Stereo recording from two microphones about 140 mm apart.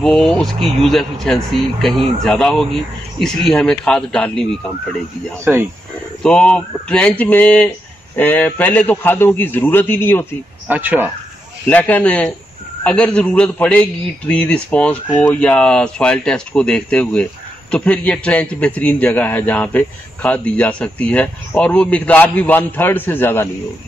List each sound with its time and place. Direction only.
0.0 s speech: 5° left (ahead or behind)
5.4 s speech: 15° right (ahead or behind)
6.2 s speech: 5° left (ahead or behind)
10.7 s speech: 10° right (ahead or behind)
11.6 s speech: 10° left (ahead or behind)